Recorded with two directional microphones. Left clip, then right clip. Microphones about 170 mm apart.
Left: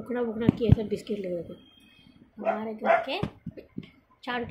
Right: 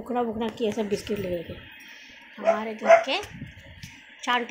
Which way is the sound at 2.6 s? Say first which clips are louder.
Right 7 dB; 10° right (ahead or behind).